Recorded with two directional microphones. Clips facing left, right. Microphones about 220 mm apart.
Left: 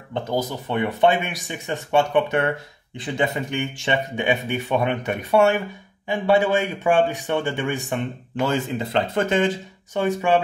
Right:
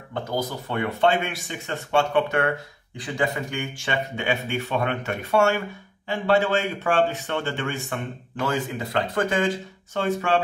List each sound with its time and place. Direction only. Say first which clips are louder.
0.1 s speech: left 3 dB; 20° left (ahead or behind)